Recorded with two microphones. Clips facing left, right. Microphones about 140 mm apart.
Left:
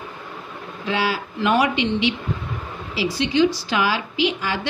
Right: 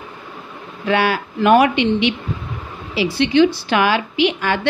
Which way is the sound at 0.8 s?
60° right (ahead or behind).